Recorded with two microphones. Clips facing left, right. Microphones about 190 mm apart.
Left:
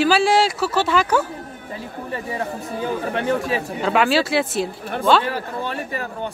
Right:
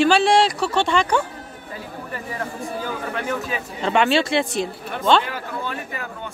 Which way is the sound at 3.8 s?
5° left (ahead or behind).